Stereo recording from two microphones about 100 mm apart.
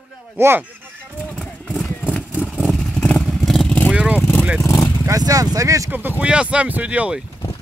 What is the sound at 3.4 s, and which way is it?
Vehicle, 5° left (ahead or behind).